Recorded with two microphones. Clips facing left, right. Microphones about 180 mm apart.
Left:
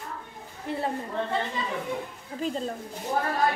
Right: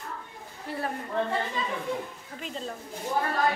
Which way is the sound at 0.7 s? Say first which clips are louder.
Left 3 dB; 25° left (ahead or behind).